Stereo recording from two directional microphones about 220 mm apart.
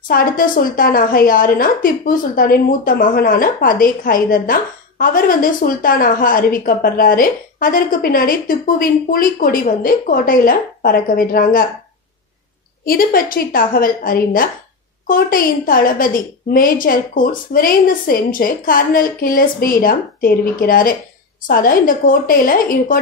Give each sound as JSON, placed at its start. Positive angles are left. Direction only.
{"t": 0.1, "sound": "a woman's voice", "side_deg": 40}
{"t": 12.8, "sound": "a woman's voice", "side_deg": 40}